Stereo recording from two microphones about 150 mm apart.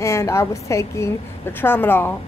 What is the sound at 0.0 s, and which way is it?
A woman's voice, 20° left (ahead or behind).